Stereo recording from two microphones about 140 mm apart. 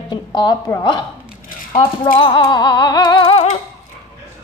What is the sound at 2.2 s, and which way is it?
Speech, 35° left (ahead or behind).